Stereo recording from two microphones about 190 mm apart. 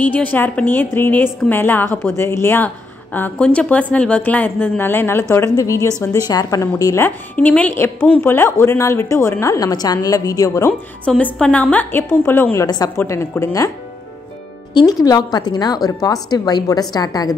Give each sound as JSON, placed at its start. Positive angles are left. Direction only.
{"t": 0.0, "sound": "a woman's voice", "side_deg": 10}
{"t": 14.7, "sound": "speech", "side_deg": 20}